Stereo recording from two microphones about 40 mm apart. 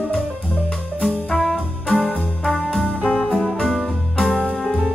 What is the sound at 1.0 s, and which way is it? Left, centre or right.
Music, centre.